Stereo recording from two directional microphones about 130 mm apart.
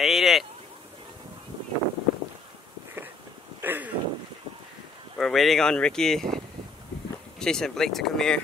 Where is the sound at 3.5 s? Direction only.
15° right (ahead or behind).